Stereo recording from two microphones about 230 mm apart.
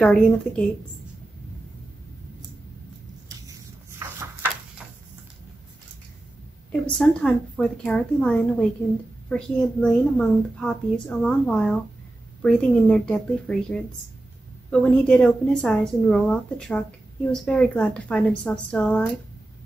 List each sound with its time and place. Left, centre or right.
0.0 s a child's voice: centre
4.2 s a sound: centre
6.7 s a child's voice: centre